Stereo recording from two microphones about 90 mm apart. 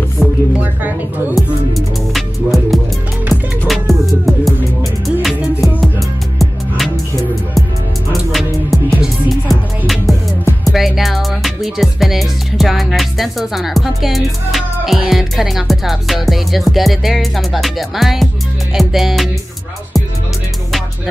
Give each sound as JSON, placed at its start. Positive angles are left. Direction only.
{"t": 0.2, "sound": "music", "side_deg": -10}
{"t": 0.6, "sound": "a woman's voice", "side_deg": -20}
{"t": 2.1, "sound": "music", "side_deg": 0}